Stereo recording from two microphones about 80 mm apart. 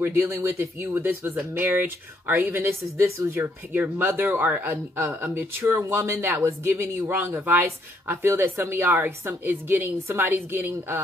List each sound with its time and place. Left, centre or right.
0.0 s speech: right